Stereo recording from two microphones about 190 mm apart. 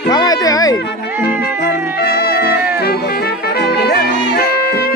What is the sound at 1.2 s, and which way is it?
Music, 55° left (ahead or behind).